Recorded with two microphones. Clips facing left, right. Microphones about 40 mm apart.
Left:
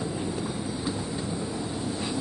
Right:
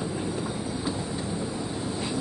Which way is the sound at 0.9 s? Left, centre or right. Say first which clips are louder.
Even; centre.